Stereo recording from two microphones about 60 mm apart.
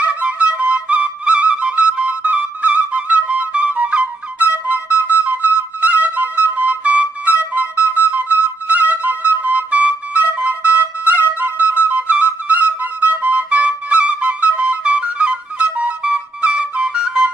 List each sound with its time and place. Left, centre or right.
0.0 s flute: right